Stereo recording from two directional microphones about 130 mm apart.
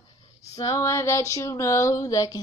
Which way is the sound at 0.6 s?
30° left (ahead or behind).